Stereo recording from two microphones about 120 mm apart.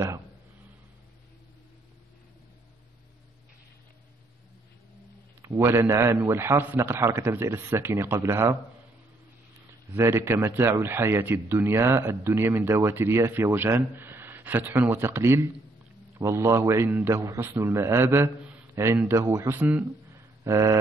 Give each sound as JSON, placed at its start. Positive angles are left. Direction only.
{"t": 5.4, "sound": "speech", "side_deg": -20}
{"t": 9.9, "sound": "speech", "side_deg": -20}
{"t": 19.6, "sound": "speech", "side_deg": -15}
{"t": 20.1, "sound": "a sound", "side_deg": -25}